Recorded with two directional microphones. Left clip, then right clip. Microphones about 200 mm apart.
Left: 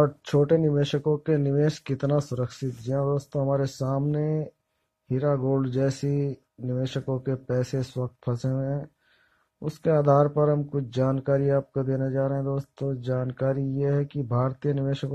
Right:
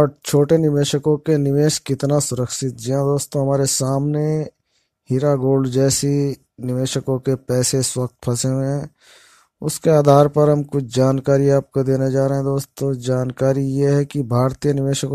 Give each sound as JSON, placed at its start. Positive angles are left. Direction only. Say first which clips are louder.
{"t": 0.0, "sound": "speech", "louder": "right 6 dB", "side_deg": -40}